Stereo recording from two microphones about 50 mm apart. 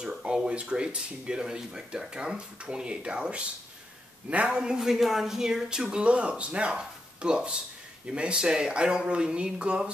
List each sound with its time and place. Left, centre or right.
0.0 s speech: centre
4.5 s speech: centre